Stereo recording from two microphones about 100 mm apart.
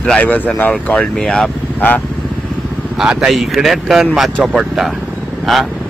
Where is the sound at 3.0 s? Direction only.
5° right (ahead or behind).